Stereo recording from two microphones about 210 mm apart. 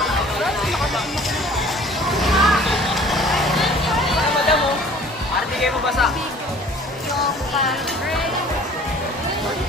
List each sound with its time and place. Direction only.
0.0 s music: centre (ahead or behind)
2.0 s vehicle: centre (ahead or behind)
5.6 s music: centre (ahead or behind)
7.5 s music: centre (ahead or behind)